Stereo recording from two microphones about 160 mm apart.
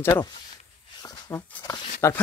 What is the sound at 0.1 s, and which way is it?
Speech, 25° left (ahead or behind).